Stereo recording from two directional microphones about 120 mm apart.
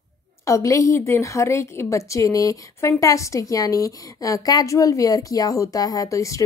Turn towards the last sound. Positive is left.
turn(degrees=25)  # may be behind; listen again after turning